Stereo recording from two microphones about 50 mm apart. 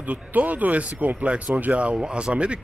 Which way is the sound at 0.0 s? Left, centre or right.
Right.